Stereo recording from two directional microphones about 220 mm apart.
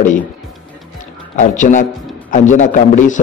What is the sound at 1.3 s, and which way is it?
A man's voice, 35° left (ahead or behind).